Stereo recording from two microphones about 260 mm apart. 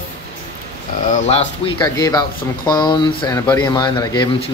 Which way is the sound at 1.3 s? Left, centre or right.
Centre.